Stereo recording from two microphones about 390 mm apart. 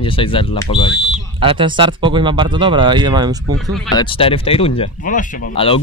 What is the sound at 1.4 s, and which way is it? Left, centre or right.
Speech, centre.